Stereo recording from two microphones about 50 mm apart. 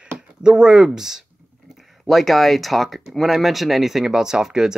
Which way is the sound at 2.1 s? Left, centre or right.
Centre.